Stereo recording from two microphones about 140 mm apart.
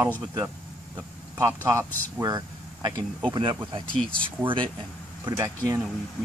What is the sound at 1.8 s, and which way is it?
Speech, 10° left (ahead or behind).